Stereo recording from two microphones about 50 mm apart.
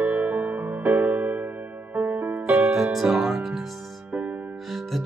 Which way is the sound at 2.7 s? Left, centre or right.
Centre.